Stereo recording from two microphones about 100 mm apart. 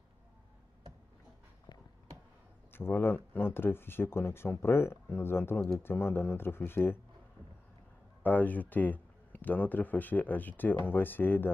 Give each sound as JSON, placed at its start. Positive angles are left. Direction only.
{"t": 2.7, "sound": "speech", "side_deg": 20}
{"t": 8.2, "sound": "speech", "side_deg": 15}